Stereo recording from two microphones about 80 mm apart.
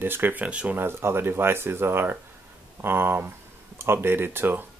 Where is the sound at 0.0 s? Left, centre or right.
Right.